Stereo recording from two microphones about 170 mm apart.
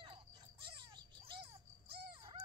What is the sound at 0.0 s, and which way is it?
Cricket, 30° right (ahead or behind).